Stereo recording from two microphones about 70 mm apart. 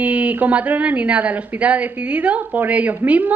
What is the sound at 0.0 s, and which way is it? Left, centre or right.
Speech, right.